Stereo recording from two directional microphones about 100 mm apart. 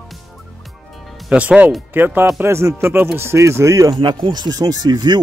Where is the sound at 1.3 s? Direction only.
15° right (ahead or behind); by 4.0 s 30° right (ahead or behind).